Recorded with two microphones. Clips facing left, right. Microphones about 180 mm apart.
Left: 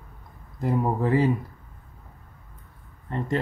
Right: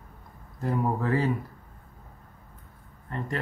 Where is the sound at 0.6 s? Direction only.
15° left (ahead or behind).